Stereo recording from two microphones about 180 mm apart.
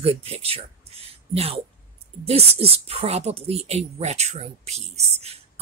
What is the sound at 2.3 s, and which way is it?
A woman's voice, 35° right (ahead or behind).